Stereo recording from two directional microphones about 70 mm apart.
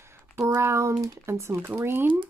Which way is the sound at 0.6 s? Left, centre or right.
Right.